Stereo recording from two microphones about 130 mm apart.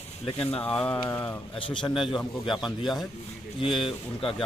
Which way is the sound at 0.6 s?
10° left (ahead or behind).